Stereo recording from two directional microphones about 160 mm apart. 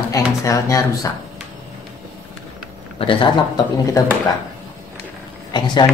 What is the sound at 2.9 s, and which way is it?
Speech, 35° left (ahead or behind).